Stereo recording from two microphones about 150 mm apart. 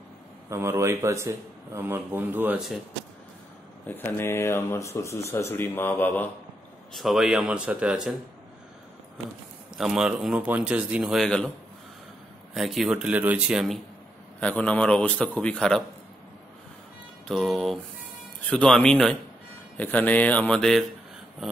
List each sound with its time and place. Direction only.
0.5 s speech: 20° right (ahead or behind)
3.8 s speech: 15° left (ahead or behind)
6.9 s speech: centre (ahead or behind)
9.8 s speech: 5° right (ahead or behind)
12.5 s speech: centre (ahead or behind)
14.4 s speech: 10° left (ahead or behind)
17.3 s speech: centre (ahead or behind)